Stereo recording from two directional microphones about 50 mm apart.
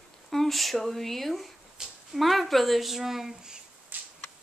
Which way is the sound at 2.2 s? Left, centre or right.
Centre.